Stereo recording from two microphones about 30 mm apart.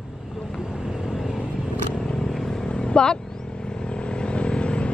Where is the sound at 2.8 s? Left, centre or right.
Left.